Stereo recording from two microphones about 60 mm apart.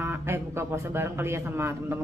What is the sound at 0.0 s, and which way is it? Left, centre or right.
A man's voice, right.